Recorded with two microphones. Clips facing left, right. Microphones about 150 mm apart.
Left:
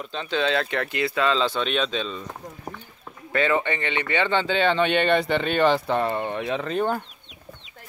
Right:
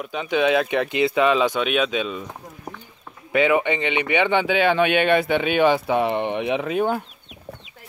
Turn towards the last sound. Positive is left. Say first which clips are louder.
# right 6 dB
turn(degrees=-5)  # may be behind; listen again after turning